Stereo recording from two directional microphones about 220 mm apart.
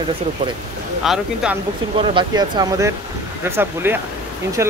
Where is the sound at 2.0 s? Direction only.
20° right (ahead or behind).